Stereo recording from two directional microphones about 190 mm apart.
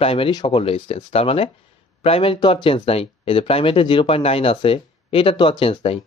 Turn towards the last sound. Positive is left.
turn(degrees=30)  # may be behind; listen again after turning